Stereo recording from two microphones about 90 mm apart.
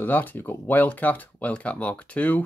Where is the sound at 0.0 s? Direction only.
20° left (ahead or behind).